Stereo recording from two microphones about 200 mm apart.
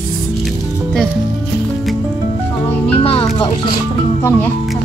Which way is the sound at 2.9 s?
30° left (ahead or behind).